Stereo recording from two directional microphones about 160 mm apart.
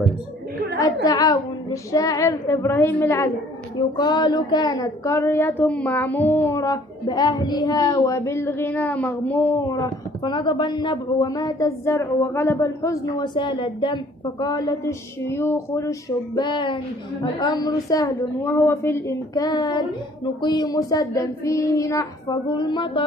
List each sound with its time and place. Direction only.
1.0 s a woman's voice: 25° left (ahead or behind)
3.7 s a woman's voice: 25° left (ahead or behind)